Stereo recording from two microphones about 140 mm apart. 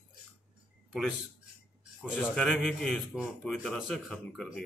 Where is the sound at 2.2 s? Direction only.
5° left (ahead or behind).